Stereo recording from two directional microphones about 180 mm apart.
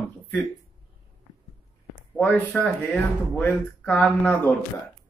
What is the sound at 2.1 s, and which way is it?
A man's voice, 10° left (ahead or behind).